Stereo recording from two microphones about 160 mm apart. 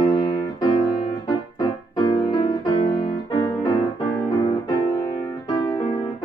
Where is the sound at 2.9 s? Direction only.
30° left (ahead or behind).